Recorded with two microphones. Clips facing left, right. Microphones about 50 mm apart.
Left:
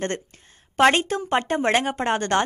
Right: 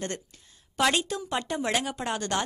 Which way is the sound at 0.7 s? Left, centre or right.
Left.